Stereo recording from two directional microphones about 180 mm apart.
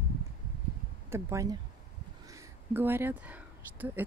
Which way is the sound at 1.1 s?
15° right (ahead or behind).